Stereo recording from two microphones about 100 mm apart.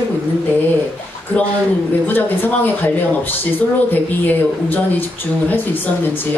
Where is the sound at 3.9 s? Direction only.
20° left (ahead or behind).